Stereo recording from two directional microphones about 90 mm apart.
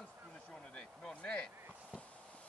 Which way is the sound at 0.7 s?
10° left (ahead or behind).